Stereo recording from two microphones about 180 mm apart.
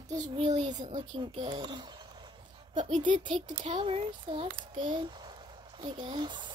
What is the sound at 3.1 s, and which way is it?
A woman's voice, 25° right (ahead or behind).